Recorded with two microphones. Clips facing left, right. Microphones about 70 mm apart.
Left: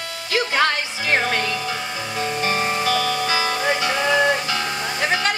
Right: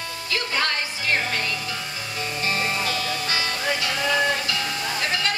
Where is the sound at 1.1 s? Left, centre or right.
Left.